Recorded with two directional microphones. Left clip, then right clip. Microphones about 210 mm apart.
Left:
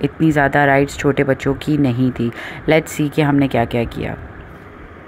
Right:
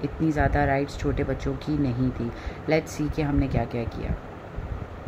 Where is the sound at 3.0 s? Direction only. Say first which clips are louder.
Left 11 dB; 35° left (ahead or behind).